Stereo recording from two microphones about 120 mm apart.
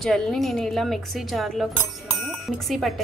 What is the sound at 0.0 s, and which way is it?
Speech, 5° left (ahead or behind).